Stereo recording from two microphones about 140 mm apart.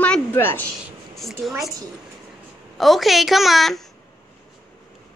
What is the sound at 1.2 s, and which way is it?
Speech, centre (ahead or behind).